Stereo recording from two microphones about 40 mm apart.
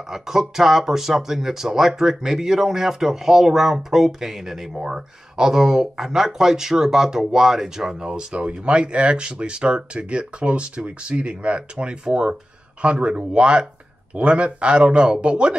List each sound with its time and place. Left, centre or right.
0.1 s speech: centre